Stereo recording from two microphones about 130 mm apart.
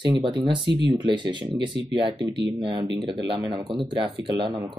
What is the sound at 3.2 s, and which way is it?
Speech, 40° right (ahead or behind).